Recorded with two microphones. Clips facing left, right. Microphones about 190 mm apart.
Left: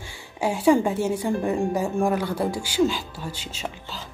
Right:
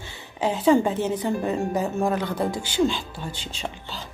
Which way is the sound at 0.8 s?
20° right (ahead or behind).